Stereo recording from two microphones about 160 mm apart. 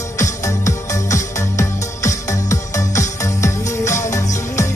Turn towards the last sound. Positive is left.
turn(degrees=20)  # may be behind; listen again after turning